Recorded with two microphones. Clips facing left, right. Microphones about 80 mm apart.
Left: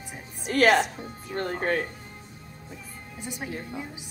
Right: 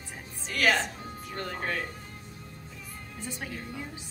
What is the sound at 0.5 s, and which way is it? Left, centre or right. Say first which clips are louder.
A woman's voice: left 6 dB; left.